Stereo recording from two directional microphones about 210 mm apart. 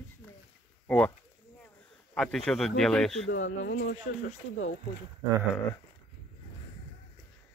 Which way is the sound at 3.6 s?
50° left (ahead or behind).